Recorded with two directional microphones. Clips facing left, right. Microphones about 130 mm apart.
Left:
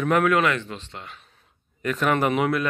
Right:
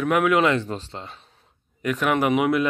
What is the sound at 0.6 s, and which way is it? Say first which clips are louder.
Speech: right 5 dB; 35° right (ahead or behind).